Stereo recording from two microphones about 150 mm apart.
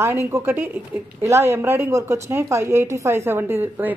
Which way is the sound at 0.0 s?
20° right (ahead or behind).